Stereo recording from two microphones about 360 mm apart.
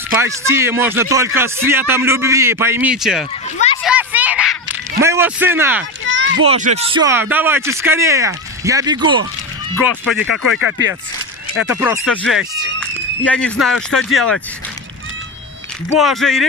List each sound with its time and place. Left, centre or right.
0.2 s speech: centre
3.8 s a sound: centre
5.0 s speech: centre
6.0 s a sound: right
6.4 s speech: centre
11.5 s speech: left
12.3 s speech: centre
16.0 s speech: centre